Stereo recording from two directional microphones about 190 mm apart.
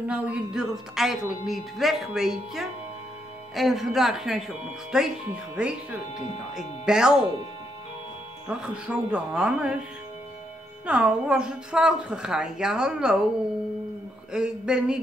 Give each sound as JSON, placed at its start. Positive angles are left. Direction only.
{"t": 0.1, "sound": "speech", "side_deg": -5}
{"t": 8.5, "sound": "speech", "side_deg": -5}
{"t": 10.9, "sound": "speech", "side_deg": -5}
{"t": 14.3, "sound": "speech", "side_deg": -5}